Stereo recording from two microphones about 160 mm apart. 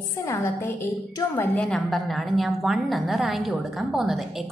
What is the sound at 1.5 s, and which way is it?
A woman's voice, 5° left (ahead or behind).